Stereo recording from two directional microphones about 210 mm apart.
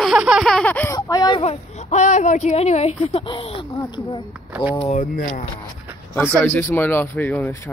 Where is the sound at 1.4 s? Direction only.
30° left (ahead or behind).